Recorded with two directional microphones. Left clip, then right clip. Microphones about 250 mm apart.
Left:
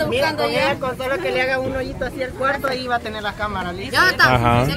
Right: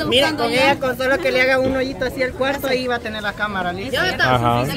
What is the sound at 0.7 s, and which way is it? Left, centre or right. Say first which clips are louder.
Speech: right 4 dB; right.